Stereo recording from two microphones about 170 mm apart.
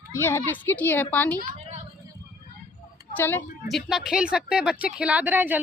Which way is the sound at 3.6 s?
Centre (ahead or behind).